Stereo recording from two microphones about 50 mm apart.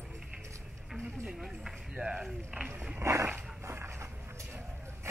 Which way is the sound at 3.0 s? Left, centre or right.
Right.